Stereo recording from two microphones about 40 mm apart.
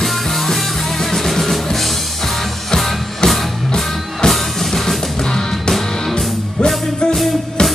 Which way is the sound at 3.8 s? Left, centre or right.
Centre.